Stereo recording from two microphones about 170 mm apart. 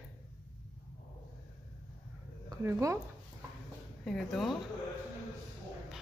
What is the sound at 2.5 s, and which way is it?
Speech, 15° right (ahead or behind).